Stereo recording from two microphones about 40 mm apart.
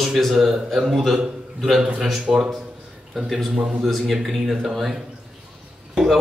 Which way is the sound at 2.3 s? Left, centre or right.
Right.